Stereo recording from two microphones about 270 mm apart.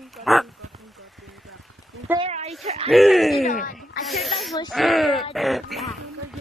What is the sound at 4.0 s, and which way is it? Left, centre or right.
A woman's voice, centre.